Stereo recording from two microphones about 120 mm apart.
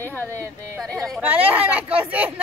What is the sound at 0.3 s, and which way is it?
Speech, 25° right (ahead or behind).